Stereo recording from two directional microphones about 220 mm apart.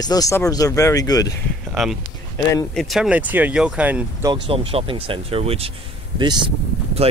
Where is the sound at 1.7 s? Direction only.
Centre (ahead or behind).